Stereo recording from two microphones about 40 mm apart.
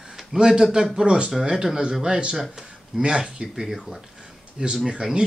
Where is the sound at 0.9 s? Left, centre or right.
Right.